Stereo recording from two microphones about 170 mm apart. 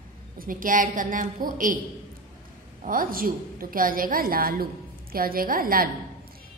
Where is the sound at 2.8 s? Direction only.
55° right (ahead or behind).